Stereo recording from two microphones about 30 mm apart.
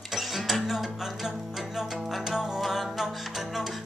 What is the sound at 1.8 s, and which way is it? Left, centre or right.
Music, centre.